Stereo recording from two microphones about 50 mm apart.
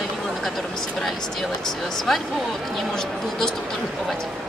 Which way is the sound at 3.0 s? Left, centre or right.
Centre.